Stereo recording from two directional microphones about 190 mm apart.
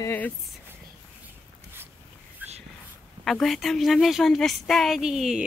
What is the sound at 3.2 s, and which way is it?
A woman's voice, centre (ahead or behind).